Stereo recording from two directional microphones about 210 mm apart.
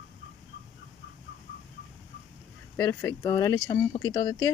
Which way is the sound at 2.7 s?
15° left (ahead or behind).